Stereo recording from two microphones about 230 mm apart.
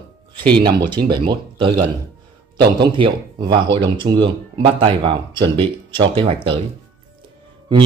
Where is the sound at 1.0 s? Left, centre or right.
Centre.